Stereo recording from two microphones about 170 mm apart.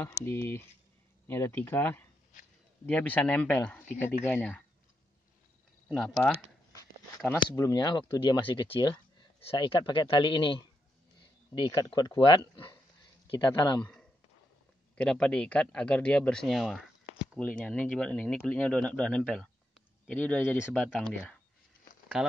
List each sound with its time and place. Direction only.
0.0 s speech: 15° left (ahead or behind)
5.9 s a man's voice: centre (ahead or behind)
7.3 s speech: 20° left (ahead or behind)
15.0 s a man's voice: 5° left (ahead or behind)
17.4 s a man's voice: 5° left (ahead or behind)
20.6 s a man's voice: 5° right (ahead or behind)